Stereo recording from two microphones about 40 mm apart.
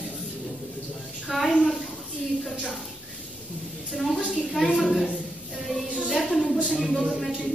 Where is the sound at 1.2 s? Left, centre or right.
Centre.